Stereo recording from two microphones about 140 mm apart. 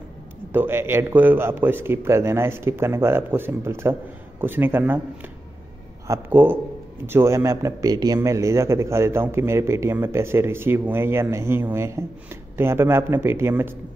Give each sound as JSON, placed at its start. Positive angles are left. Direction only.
{"t": 0.5, "sound": "a man's voice", "side_deg": -15}
{"t": 6.0, "sound": "a man's voice", "side_deg": -15}